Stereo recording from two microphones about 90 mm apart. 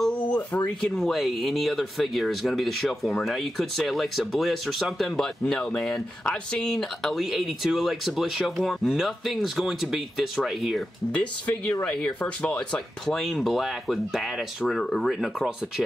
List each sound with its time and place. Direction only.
0.0 s a sound: 15° left (ahead or behind)
0.8 s speech: 5° left (ahead or behind)
11.1 s speech: 10° left (ahead or behind)